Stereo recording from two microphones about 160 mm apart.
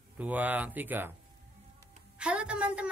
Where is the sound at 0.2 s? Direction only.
10° right (ahead or behind).